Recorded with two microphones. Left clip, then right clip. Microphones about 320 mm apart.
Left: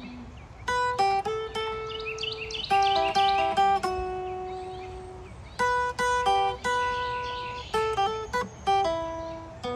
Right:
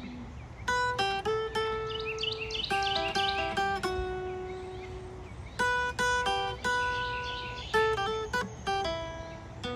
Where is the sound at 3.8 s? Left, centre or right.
Centre.